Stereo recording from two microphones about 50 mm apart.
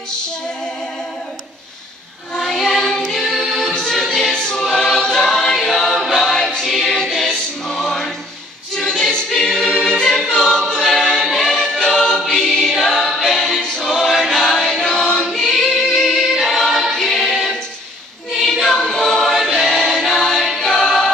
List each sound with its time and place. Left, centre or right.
2.3 s music: centre
3.1 s choir: centre
19.5 s music: centre
20.6 s choir: centre